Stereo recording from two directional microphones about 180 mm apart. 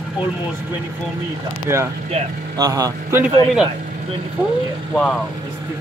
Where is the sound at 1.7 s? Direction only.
15° right (ahead or behind).